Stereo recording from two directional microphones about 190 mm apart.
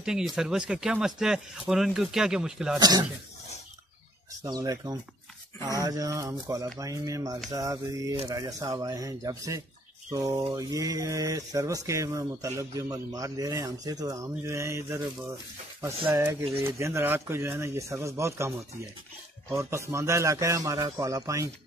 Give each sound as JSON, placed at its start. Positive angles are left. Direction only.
{"t": 0.0, "sound": "speech", "side_deg": -5}
{"t": 2.8, "sound": "speech", "side_deg": -20}
{"t": 4.4, "sound": "speech", "side_deg": -20}
{"t": 16.1, "sound": "speech", "side_deg": -15}
{"t": 19.5, "sound": "speech", "side_deg": -15}